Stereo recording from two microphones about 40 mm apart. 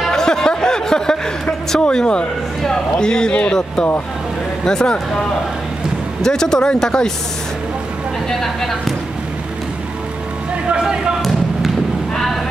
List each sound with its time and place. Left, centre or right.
0.0 s a sound: centre
2.6 s speech: centre
4.6 s speech: centre
6.2 s speech: centre
8.4 s speech: centre
10.7 s speech: right